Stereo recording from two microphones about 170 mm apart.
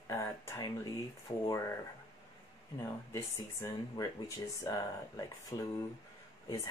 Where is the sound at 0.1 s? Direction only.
15° left (ahead or behind).